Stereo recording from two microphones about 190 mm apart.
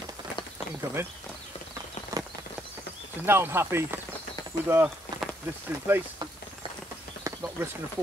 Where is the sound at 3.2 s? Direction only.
10° right (ahead or behind).